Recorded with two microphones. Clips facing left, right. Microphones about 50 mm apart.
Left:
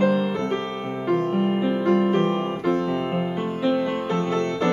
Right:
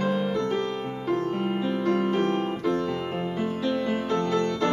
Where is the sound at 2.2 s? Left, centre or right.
Left.